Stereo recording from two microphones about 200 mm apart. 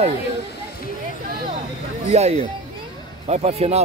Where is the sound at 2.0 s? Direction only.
35° right (ahead or behind).